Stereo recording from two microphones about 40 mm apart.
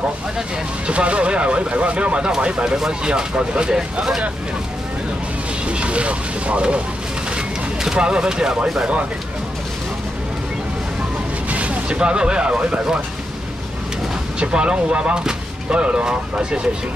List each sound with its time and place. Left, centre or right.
0.8 s speech: right
5.7 s speech: right
7.3 s a sound: right
11.5 s speech: right
14.4 s speech: right